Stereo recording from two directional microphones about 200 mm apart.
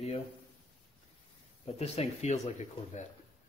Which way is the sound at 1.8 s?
30° left (ahead or behind).